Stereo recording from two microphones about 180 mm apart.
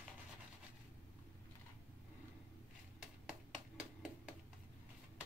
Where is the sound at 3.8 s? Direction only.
5° right (ahead or behind).